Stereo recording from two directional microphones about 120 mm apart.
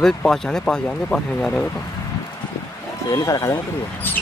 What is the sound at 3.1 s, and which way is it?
Speech, 30° left (ahead or behind).